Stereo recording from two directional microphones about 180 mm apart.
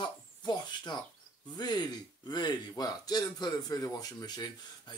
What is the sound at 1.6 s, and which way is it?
A man's voice, 25° left (ahead or behind).